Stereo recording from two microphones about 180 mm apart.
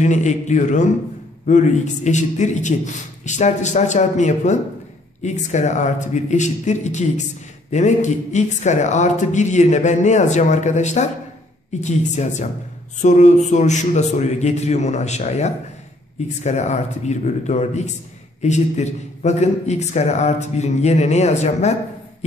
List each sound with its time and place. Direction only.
0.0 s a man's voice: 40° left (ahead or behind)